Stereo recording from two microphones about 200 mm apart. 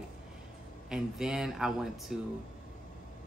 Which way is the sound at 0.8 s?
5° right (ahead or behind).